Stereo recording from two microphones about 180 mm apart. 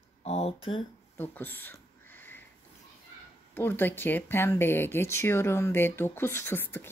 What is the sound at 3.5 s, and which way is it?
Speech, 10° left (ahead or behind).